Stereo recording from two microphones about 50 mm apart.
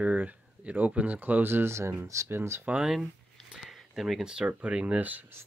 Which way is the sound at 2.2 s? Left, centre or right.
Right.